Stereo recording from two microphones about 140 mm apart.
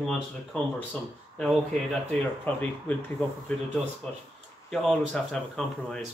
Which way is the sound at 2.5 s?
10° left (ahead or behind).